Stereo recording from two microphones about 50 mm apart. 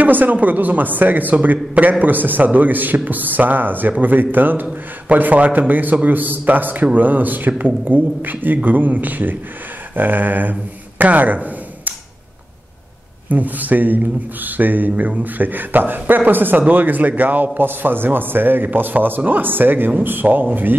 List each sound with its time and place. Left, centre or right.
0.0 s speech: right
13.3 s speech: right